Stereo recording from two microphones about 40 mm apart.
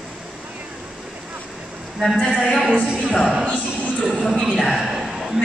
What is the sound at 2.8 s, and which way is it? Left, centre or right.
Music, right.